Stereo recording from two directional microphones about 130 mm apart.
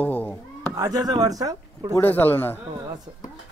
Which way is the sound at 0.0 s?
15° left (ahead or behind).